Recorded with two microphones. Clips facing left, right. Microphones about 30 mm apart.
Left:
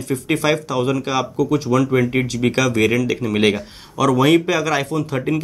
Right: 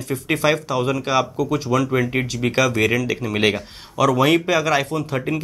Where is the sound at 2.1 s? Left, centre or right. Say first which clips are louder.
Left 3 dB; centre.